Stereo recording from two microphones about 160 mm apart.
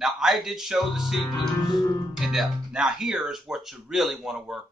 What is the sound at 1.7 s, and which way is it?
Music, 25° left (ahead or behind).